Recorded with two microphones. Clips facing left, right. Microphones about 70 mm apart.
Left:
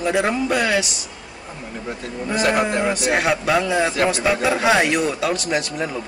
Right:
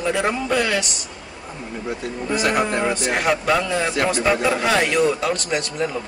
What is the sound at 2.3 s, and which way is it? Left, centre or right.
Speech, centre.